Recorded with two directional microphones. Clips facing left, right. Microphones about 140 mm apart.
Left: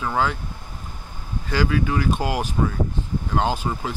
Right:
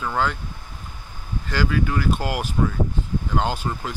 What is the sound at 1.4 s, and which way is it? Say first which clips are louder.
Speech: left 1 dB; 5° left (ahead or behind).